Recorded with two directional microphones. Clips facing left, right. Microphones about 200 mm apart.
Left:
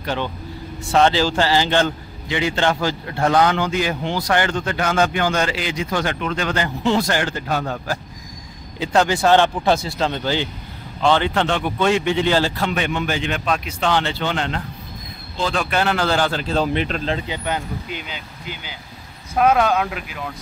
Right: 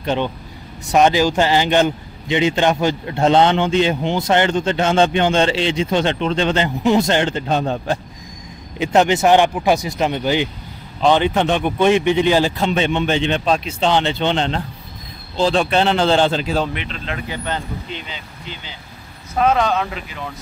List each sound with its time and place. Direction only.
0.0 s a man's voice: 20° right (ahead or behind)
16.7 s speech: 40° left (ahead or behind)
17.3 s speech: 10° left (ahead or behind)